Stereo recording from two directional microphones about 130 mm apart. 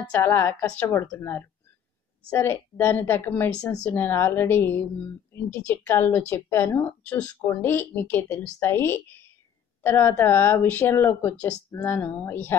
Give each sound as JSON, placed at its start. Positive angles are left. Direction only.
{"t": 0.2, "sound": "speech", "side_deg": 20}